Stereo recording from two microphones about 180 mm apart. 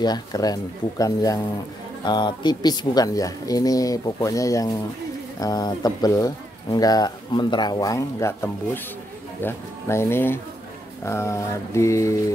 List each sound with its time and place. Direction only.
0.0 s speech: 20° left (ahead or behind)
9.4 s mantra: 15° left (ahead or behind)